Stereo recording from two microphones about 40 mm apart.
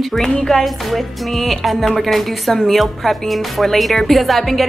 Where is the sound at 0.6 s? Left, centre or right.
Centre.